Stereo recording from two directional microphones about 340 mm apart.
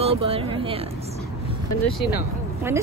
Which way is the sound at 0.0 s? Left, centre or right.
Centre.